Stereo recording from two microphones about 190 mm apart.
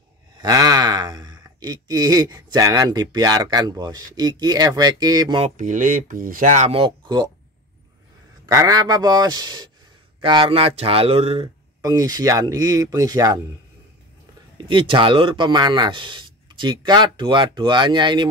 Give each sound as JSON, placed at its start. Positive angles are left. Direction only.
{"t": 0.4, "sound": "a man's voice", "side_deg": -20}
{"t": 5.6, "sound": "speech", "side_deg": -45}
{"t": 8.5, "sound": "a man's voice", "side_deg": -15}
{"t": 14.6, "sound": "a man's voice", "side_deg": -25}